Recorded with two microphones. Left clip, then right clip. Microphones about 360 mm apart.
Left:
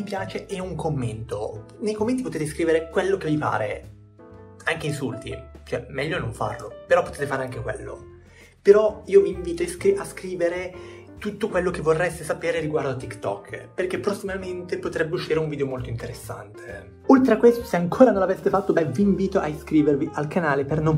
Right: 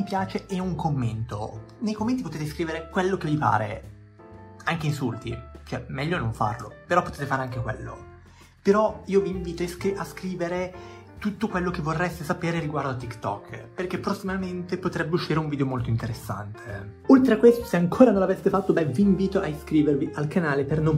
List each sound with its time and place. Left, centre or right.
0.0 s speech: centre
19.3 s speech: centre